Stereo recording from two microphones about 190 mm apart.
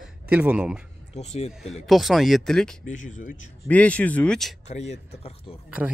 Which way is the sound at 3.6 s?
5° left (ahead or behind).